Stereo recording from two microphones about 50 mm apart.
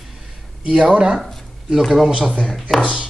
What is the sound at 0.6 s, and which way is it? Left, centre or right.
Speech, centre.